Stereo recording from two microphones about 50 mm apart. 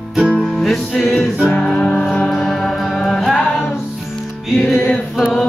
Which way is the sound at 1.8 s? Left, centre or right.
Left.